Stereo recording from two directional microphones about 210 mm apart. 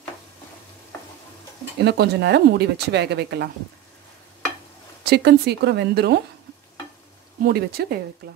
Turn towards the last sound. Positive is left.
turn(degrees=-45)  # may be behind; listen again after turning